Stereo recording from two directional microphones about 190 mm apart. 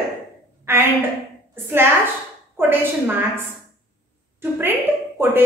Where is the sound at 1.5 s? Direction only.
10° right (ahead or behind).